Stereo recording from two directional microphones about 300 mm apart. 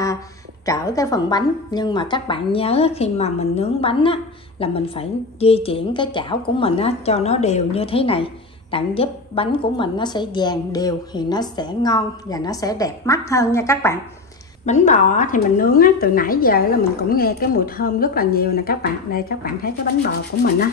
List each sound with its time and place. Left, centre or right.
0.7 s a woman's voice: centre
14.7 s a woman's voice: left